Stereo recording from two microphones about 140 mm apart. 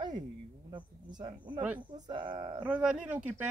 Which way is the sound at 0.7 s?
35° right (ahead or behind).